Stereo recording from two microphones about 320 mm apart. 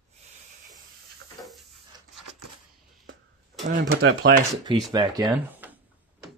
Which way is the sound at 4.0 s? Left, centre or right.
Right.